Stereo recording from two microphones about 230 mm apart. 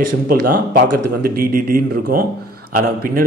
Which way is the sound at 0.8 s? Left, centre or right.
Right.